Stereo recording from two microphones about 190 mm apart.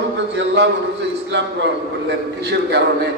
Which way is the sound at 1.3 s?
65° right (ahead or behind).